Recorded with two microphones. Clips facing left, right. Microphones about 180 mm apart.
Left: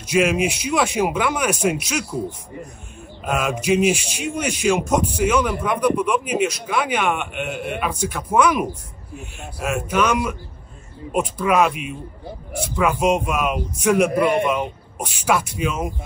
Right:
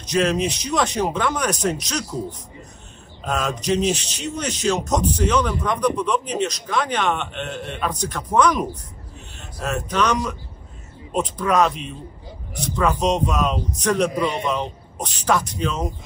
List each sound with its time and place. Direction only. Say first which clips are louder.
0.0 s speech: left 2 dB; 10° left (ahead or behind)
3.3 s speech: left 2 dB; 10° left (ahead or behind)